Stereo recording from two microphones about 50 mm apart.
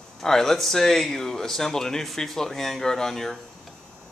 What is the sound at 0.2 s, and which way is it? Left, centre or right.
Speech, centre.